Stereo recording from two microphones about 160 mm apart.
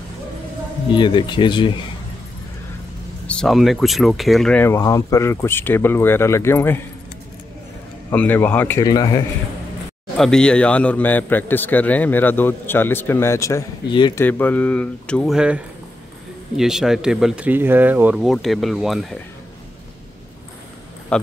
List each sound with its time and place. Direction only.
0.9 s speech: 30° left (ahead or behind)
3.3 s a man's voice: 5° left (ahead or behind)
8.1 s a man's voice: 10° left (ahead or behind)
10.1 s a man's voice: 5° left (ahead or behind)
15.3 s speech: 5° right (ahead or behind)
21.1 s speech: 5° left (ahead or behind)